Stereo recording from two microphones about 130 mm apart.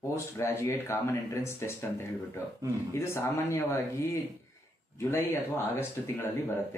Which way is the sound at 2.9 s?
20° left (ahead or behind).